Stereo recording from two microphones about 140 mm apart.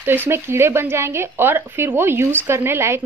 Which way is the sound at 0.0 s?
15° right (ahead or behind).